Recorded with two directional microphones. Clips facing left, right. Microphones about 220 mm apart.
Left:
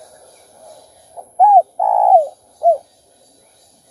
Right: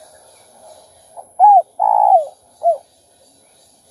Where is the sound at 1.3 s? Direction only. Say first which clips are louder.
Even; 30° left (ahead or behind).